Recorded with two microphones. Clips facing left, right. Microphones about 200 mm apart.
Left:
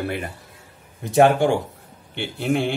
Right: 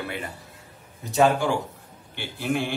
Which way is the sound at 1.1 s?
55° left (ahead or behind).